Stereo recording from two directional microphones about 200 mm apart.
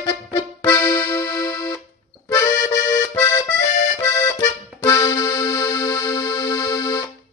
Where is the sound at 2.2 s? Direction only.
15° left (ahead or behind).